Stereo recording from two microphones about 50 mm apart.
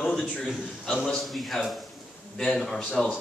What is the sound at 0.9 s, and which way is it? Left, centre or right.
Speech, centre.